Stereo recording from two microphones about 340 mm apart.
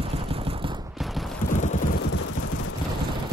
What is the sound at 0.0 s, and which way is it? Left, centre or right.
Machine gun, centre.